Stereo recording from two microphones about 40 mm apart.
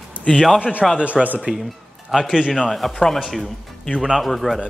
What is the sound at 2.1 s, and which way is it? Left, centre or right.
Speech, centre.